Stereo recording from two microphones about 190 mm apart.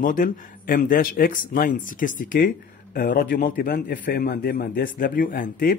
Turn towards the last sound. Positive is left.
turn(degrees=50)  # may be behind; listen again after turning